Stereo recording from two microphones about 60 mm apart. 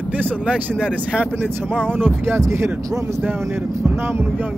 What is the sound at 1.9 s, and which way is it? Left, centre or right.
Speech, right.